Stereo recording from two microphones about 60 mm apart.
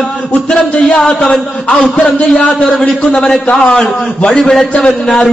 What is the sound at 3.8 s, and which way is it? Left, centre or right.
Speech, centre.